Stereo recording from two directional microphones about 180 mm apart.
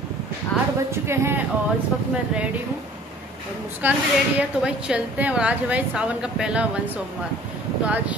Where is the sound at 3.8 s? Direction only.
10° right (ahead or behind).